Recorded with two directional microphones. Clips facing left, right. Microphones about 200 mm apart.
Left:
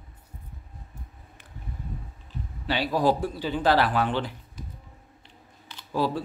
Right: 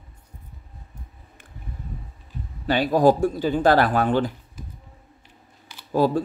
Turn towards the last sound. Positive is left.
turn(degrees=-45)  # may be behind; listen again after turning